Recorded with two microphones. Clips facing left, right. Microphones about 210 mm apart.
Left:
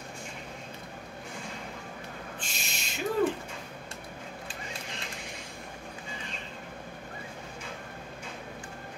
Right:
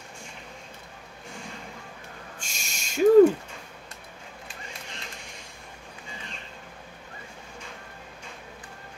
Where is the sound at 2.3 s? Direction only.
45° right (ahead or behind).